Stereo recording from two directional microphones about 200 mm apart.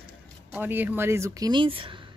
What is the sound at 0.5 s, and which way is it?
Speech, 10° right (ahead or behind).